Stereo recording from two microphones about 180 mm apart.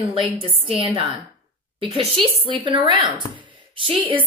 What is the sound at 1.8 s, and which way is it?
A woman's voice, 30° right (ahead or behind).